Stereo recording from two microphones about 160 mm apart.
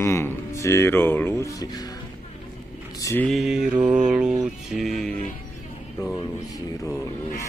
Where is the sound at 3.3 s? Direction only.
Centre (ahead or behind).